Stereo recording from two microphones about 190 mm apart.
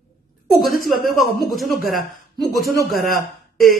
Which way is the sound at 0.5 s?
Centre (ahead or behind).